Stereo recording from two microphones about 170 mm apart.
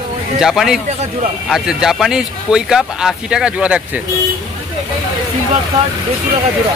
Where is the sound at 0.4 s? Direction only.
Centre (ahead or behind).